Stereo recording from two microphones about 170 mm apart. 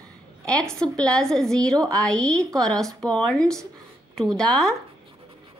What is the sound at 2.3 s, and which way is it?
Speech, 20° right (ahead or behind).